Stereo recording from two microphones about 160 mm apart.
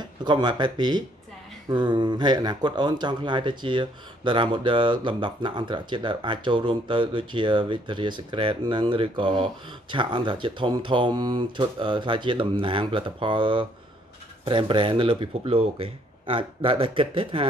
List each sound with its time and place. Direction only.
0.0 s speech: 25° right (ahead or behind)